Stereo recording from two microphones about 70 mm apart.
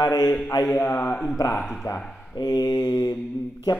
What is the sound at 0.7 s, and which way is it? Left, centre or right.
Speech, left.